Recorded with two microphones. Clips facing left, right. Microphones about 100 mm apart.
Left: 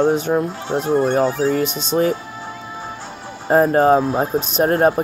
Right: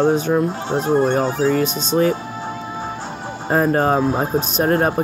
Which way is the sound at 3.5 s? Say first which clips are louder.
Left 3 dB; 25° left (ahead or behind).